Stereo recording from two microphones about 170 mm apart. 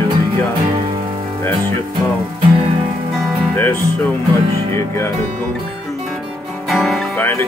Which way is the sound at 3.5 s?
15° left (ahead or behind).